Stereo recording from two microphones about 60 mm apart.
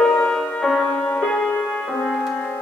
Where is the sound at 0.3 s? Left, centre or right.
Centre.